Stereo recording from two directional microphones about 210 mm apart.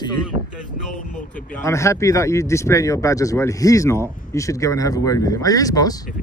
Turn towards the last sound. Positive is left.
turn(degrees=15)  # may be behind; listen again after turning